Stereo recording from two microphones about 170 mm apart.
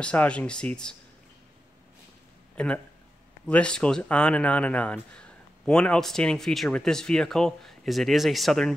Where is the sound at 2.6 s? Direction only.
5° left (ahead or behind).